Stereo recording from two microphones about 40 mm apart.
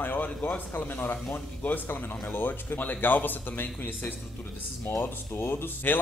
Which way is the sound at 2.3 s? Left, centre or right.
Left.